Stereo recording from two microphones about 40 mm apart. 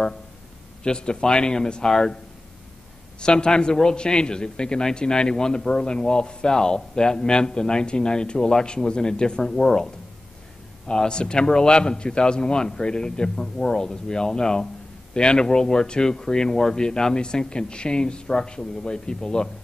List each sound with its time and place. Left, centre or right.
0.8 s a man's voice: left
3.2 s a man's voice: left
10.9 s a man's voice: left